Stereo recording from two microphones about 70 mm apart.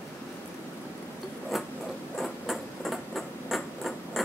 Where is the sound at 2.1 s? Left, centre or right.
Centre.